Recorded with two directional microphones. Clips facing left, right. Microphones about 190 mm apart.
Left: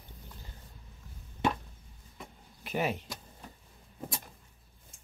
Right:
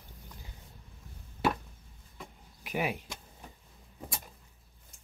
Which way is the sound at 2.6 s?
10° right (ahead or behind).